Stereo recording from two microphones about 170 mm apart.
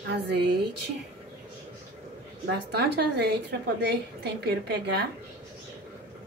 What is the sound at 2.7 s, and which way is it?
A woman's voice, 75° right (ahead or behind).